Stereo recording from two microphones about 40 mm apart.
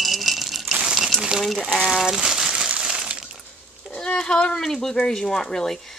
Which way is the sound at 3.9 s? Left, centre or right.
Centre.